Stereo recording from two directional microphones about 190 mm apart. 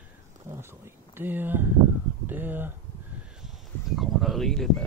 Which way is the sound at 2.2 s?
10° right (ahead or behind).